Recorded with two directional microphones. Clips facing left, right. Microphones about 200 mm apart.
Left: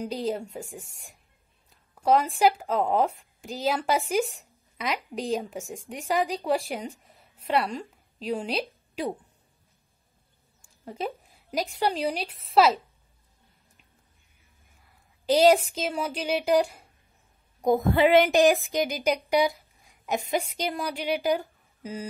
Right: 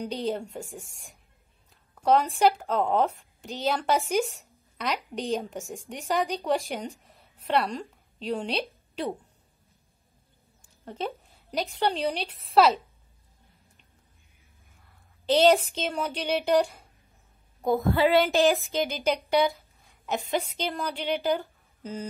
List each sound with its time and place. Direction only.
0.0 s a woman's voice: 5° left (ahead or behind)
10.9 s a woman's voice: 5° left (ahead or behind)
15.2 s a woman's voice: 5° left (ahead or behind)
17.6 s a sound: 15° left (ahead or behind)
19.8 s a woman's voice: 15° left (ahead or behind)